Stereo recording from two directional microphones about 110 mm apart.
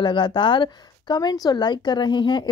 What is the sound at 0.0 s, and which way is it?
Speech, 45° left (ahead or behind).